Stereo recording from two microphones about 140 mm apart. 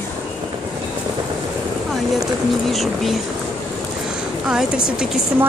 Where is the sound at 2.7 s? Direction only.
Centre (ahead or behind).